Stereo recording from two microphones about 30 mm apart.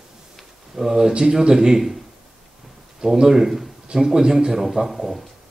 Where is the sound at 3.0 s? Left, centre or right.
Centre.